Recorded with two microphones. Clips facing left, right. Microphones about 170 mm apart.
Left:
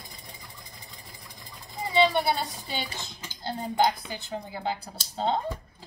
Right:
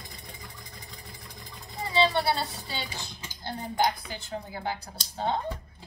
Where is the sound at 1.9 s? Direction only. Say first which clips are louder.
Left 2 dB; 15° left (ahead or behind).